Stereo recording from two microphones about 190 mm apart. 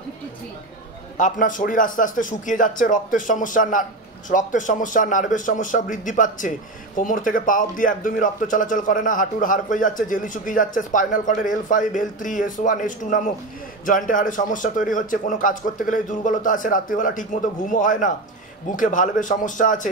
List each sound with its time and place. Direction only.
1.1 s speech: 40° left (ahead or behind)